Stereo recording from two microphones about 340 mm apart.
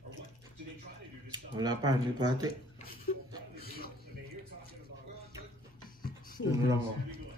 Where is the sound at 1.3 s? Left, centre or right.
Centre.